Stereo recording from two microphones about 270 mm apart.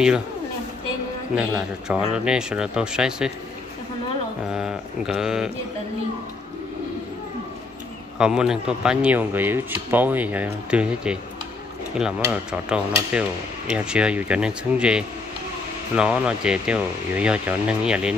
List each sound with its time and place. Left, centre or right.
1.3 s speech: centre
4.5 s speech: centre
8.2 s speech: centre